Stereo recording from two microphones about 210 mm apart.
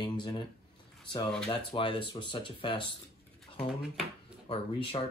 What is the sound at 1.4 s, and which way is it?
Speech, 25° left (ahead or behind).